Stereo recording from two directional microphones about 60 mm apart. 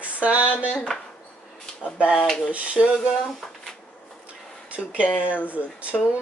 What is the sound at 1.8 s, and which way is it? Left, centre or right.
Speech, centre.